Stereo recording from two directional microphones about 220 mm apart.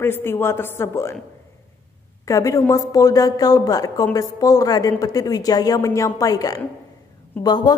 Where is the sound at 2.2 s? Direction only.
15° left (ahead or behind).